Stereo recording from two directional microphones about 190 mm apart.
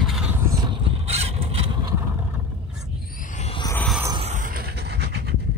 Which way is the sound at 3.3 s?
35° left (ahead or behind).